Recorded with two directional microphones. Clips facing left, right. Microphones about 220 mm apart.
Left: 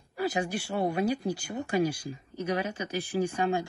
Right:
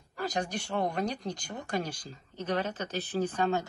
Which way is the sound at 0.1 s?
10° left (ahead or behind).